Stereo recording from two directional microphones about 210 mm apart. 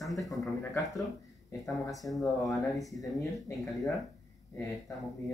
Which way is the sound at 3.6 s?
Centre (ahead or behind).